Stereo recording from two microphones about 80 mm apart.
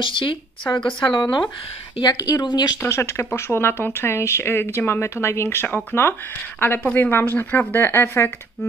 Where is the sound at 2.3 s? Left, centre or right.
Left.